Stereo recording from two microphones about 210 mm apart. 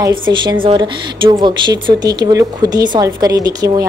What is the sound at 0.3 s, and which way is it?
Speech, 20° right (ahead or behind).